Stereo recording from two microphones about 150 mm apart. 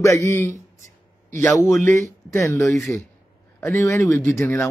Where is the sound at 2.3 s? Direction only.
15° left (ahead or behind).